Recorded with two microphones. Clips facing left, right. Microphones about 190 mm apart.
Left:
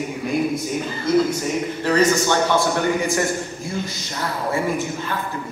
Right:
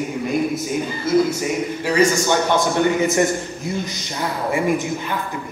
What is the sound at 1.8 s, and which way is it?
Speech, 10° right (ahead or behind).